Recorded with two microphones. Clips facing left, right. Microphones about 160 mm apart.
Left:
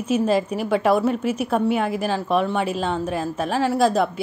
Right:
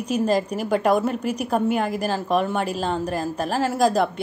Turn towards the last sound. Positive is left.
turn(degrees=0)  # may be behind; listen again after turning